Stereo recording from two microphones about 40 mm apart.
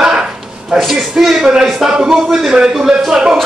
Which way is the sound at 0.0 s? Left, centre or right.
Centre.